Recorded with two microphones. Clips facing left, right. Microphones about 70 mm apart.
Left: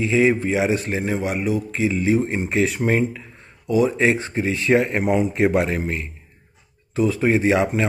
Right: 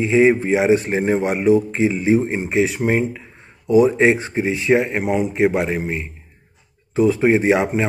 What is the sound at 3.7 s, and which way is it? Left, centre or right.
Speech, right.